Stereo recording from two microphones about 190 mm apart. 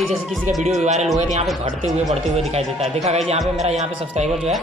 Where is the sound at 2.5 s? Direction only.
35° right (ahead or behind).